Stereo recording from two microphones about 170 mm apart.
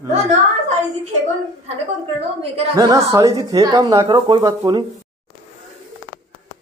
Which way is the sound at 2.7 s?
20° right (ahead or behind).